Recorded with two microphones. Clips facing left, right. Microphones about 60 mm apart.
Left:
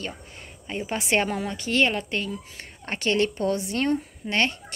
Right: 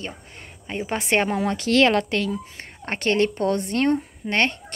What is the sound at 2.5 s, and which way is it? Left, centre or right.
A woman's voice, right.